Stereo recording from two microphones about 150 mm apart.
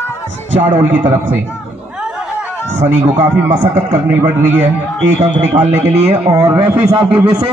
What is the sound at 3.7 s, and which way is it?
Speech, 50° right (ahead or behind).